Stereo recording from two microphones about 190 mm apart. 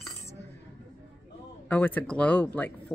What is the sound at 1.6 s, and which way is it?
Speech, 10° left (ahead or behind).